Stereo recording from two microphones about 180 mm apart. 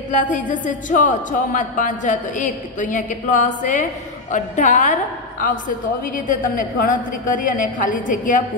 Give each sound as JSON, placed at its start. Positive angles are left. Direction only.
{"t": 0.1, "sound": "a woman's voice", "side_deg": 45}